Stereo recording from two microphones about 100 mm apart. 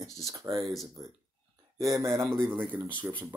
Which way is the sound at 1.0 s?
35° right (ahead or behind).